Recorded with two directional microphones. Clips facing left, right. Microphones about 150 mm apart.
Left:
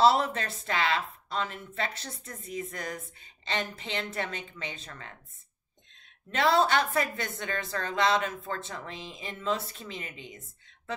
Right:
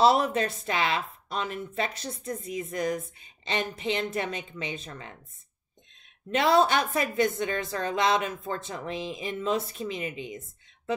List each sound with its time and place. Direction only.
0.0 s a woman's voice: 15° right (ahead or behind)
6.3 s a woman's voice: 15° right (ahead or behind)